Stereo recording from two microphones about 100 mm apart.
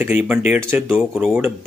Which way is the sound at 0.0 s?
15° right (ahead or behind).